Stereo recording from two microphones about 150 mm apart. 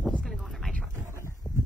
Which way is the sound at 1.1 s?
20° right (ahead or behind).